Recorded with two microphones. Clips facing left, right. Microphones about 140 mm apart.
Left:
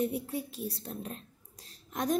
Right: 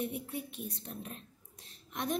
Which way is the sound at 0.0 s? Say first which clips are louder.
Left 5 dB; 35° left (ahead or behind).